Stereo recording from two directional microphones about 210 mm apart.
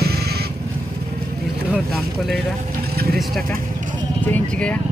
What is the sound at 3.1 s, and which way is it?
Vehicle, centre (ahead or behind).